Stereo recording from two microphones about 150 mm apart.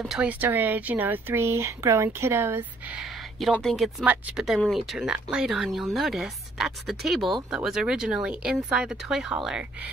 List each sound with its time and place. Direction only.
0.0 s speech: 5° right (ahead or behind)
3.0 s a sound: centre (ahead or behind)
3.5 s speech: centre (ahead or behind)